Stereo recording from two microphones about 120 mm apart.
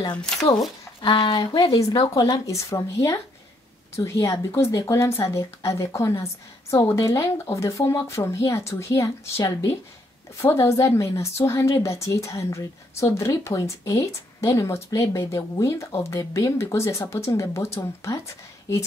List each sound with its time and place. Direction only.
0.0 s speech: 35° left (ahead or behind)
1.6 s speech: 55° left (ahead or behind)
1.9 s a woman's voice: 30° left (ahead or behind)